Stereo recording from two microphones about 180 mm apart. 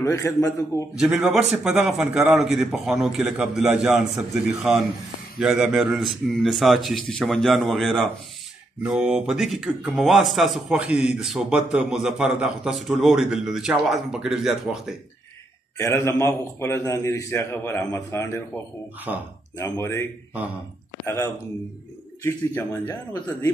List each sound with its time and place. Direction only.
0.0 s a man's voice: 20° left (ahead or behind)
0.9 s speech: centre (ahead or behind)
15.8 s a man's voice: 15° left (ahead or behind)
19.1 s speech: 5° right (ahead or behind)
19.6 s a man's voice: 15° left (ahead or behind)
22.2 s a man's voice: 15° left (ahead or behind)